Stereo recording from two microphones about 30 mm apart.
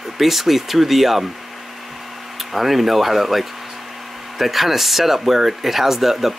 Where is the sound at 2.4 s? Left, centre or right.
Centre.